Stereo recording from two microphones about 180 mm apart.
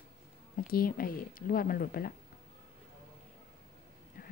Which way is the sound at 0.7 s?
55° left (ahead or behind).